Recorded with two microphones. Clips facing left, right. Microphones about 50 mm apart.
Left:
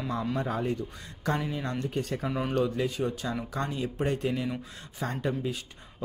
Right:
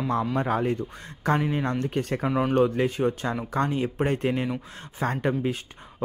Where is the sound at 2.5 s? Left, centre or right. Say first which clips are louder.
Right 5 dB; right.